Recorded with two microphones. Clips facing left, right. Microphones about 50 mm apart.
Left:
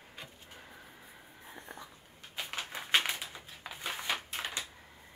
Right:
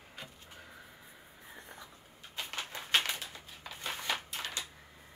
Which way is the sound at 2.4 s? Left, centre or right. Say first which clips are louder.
Left 1 dB; centre.